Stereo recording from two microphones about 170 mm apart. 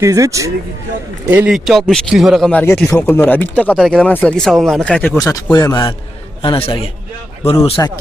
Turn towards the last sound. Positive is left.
turn(degrees=35)  # may be behind; listen again after turning